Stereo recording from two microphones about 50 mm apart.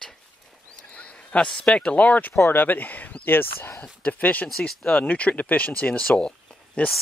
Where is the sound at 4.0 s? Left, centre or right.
Left.